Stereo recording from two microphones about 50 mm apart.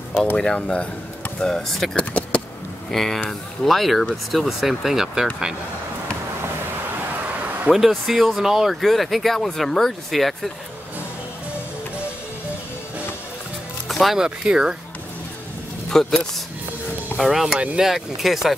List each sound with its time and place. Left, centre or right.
0.6 s speech: left
1.4 s speech: centre
2.0 s a sound: left
2.9 s speech: centre
7.7 s speech: centre
13.8 s music: centre
14.1 s speech: centre
15.9 s speech: centre
17.2 s speech: centre